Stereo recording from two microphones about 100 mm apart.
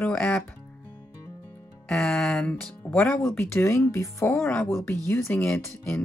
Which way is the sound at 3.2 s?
25° left (ahead or behind).